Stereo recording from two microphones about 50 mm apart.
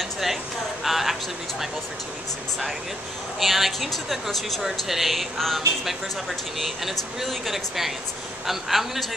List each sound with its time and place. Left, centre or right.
0.0 s a sound: centre
3.3 s a woman's voice: centre
6.6 s a woman's voice: centre